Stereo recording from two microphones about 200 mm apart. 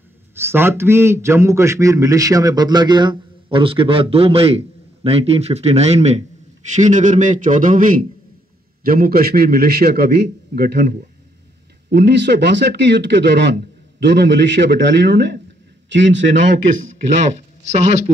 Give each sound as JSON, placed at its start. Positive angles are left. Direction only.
{"t": 0.3, "sound": "a man's voice", "side_deg": -10}
{"t": 17.3, "sound": "speech", "side_deg": -35}